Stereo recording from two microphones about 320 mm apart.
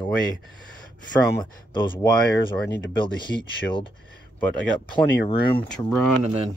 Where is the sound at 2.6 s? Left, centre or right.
Left.